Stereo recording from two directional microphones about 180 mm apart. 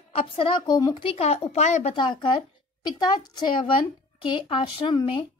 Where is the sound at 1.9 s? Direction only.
25° left (ahead or behind).